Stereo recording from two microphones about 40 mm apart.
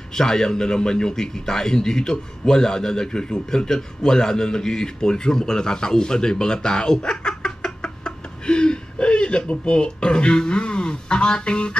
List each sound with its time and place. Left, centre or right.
0.1 s a man's voice: centre